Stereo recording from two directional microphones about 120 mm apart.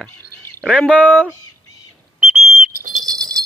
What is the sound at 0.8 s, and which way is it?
Speech, 10° right (ahead or behind).